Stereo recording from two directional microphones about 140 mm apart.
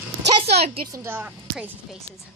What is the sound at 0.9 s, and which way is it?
Speech, 20° right (ahead or behind).